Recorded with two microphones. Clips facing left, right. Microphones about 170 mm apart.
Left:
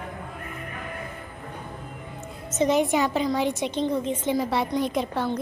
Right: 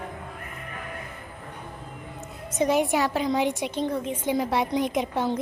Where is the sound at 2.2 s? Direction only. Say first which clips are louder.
Left 1 dB; 15° right (ahead or behind).